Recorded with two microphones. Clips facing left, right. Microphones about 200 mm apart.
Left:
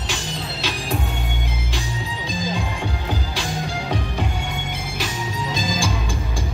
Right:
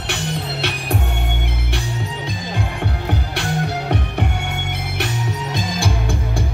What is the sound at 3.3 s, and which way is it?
Music, 60° right (ahead or behind).